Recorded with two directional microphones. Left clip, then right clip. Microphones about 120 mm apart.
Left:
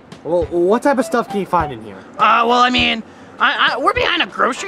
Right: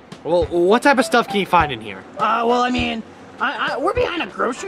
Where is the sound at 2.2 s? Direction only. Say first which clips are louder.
Left 5 dB; 25° left (ahead or behind).